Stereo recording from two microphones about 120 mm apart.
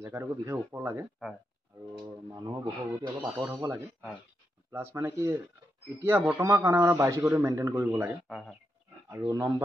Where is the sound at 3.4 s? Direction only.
25° right (ahead or behind).